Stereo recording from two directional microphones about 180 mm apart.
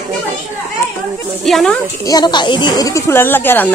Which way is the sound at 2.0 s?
25° left (ahead or behind).